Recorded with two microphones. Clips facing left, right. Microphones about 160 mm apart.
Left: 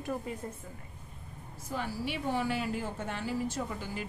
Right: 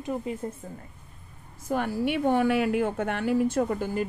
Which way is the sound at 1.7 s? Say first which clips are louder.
Right 9 dB; 55° right (ahead or behind).